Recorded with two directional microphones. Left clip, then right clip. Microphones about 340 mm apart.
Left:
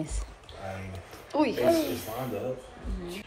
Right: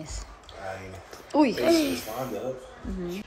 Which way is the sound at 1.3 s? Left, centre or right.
Centre.